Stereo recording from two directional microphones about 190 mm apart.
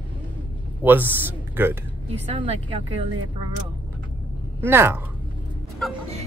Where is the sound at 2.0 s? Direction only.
25° right (ahead or behind).